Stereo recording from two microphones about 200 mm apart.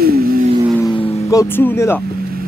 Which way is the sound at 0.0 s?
50° right (ahead or behind).